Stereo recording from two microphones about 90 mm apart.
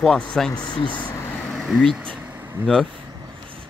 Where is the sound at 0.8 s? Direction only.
15° left (ahead or behind).